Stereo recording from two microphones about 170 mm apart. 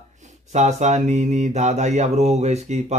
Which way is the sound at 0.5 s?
40° right (ahead or behind).